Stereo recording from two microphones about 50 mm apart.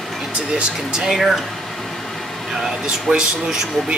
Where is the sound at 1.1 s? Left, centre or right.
Centre.